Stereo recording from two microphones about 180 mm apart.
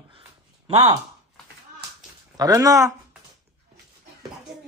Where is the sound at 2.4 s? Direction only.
20° right (ahead or behind).